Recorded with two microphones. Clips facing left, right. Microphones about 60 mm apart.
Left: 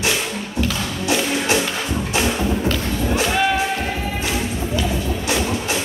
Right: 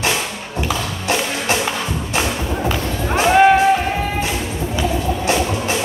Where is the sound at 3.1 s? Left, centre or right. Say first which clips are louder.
Right 9 dB; right.